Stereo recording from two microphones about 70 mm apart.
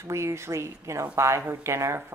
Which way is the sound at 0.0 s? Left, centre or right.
Right.